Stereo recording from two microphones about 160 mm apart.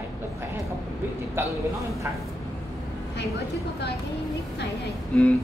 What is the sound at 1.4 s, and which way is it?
Speech, 15° right (ahead or behind).